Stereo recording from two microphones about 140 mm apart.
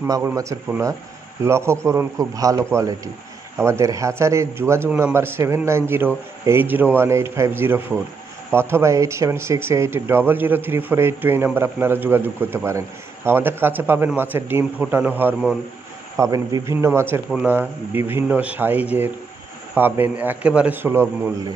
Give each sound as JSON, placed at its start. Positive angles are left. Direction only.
{"t": 0.0, "sound": "a man's voice", "side_deg": -20}
{"t": 16.2, "sound": "a man's voice", "side_deg": -25}